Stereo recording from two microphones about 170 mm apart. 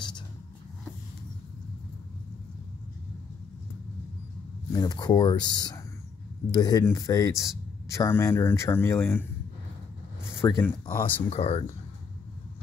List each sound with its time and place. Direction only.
4.7 s speech: 25° left (ahead or behind)
10.4 s speech: 15° left (ahead or behind)
11.2 s speech: 40° left (ahead or behind)